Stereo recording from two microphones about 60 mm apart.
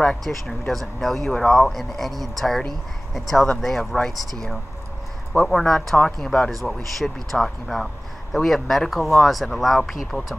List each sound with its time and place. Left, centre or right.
0.2 s speech: centre